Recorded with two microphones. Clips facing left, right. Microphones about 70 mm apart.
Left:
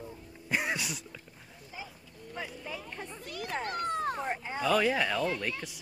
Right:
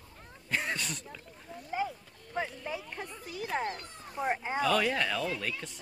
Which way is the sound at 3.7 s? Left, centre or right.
Left.